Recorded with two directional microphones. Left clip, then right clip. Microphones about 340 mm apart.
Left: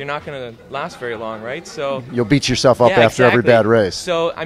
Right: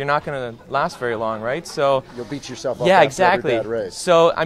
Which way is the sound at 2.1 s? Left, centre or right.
Left.